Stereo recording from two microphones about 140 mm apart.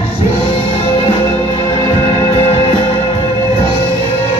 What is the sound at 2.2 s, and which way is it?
Music, 45° left (ahead or behind).